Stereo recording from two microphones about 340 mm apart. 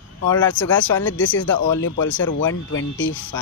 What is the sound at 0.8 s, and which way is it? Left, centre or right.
Speech, left.